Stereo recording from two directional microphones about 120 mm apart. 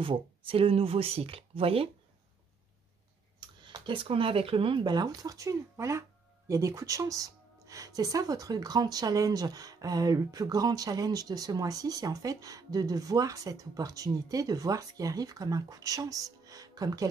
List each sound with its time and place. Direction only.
0.0 s speech: 45° right (ahead or behind)
3.3 s speech: 40° right (ahead or behind)